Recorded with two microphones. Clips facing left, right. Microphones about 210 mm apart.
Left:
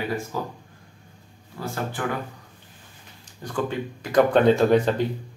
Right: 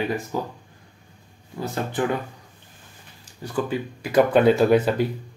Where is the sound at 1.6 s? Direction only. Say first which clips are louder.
Right 4 dB; 20° right (ahead or behind).